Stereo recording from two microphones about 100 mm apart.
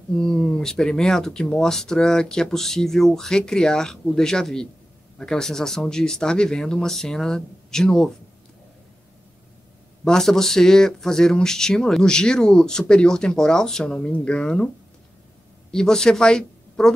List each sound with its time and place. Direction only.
0.1 s speech: 5° left (ahead or behind)
10.0 s speech: 5° left (ahead or behind)
15.7 s a woman's voice: 5° left (ahead or behind)